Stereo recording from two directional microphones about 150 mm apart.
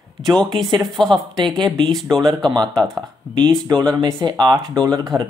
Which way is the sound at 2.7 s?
5° left (ahead or behind).